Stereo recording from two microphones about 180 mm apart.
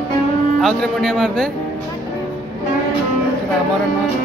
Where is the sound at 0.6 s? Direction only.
Centre (ahead or behind).